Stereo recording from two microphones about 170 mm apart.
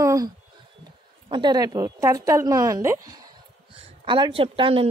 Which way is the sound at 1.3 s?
25° right (ahead or behind).